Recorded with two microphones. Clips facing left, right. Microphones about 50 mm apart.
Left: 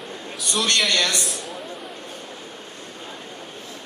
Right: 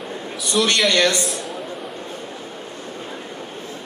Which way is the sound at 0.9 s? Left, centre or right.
Right.